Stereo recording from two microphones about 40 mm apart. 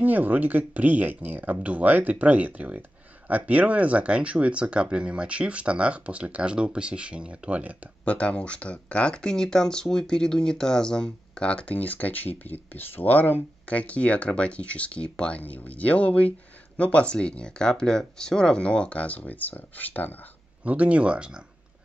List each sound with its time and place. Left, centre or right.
0.0 s speech: right
8.0 s speech: left
11.7 s speech: left
13.7 s speech: left
15.4 s speech: left
20.6 s speech: right